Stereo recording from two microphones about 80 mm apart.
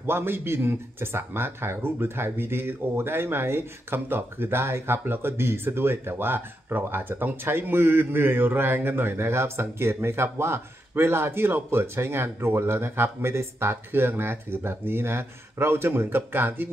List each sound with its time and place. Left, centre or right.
0.0 s speech: right